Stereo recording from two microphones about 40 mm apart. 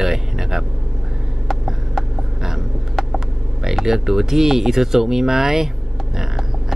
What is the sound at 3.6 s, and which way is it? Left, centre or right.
Speech, centre.